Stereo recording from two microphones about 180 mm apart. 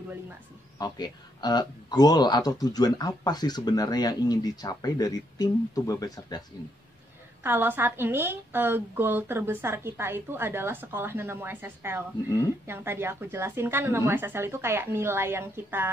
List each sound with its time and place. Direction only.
0.7 s speech: 25° left (ahead or behind)
7.4 s a woman's voice: 10° right (ahead or behind)